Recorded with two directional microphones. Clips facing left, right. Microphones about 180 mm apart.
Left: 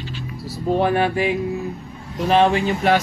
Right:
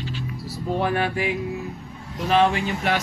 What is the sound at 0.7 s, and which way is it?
Speech, 25° left (ahead or behind).